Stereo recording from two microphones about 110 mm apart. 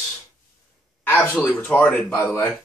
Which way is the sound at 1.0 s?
20° left (ahead or behind).